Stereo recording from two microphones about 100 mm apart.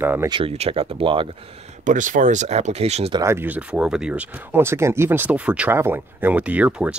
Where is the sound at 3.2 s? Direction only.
20° right (ahead or behind).